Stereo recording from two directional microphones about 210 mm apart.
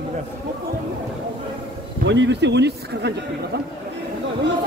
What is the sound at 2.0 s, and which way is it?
A man's voice, 60° right (ahead or behind).